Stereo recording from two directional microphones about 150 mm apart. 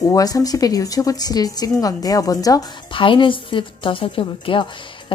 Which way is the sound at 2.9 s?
35° left (ahead or behind).